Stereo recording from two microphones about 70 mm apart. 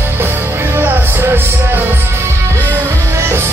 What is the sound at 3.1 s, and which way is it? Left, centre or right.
Music, right.